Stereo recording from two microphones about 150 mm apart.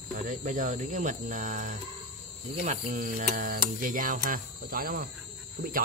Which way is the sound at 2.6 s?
55° right (ahead or behind).